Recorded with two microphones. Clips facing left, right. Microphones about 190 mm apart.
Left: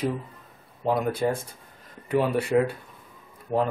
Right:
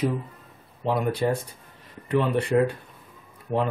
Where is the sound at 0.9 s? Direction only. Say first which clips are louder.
Even; centre (ahead or behind).